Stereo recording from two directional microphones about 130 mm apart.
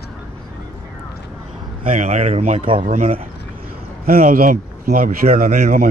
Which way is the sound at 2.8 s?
55° right (ahead or behind).